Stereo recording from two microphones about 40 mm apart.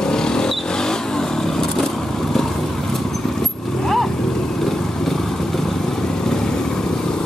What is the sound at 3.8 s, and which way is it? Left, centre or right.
Vehicle, centre.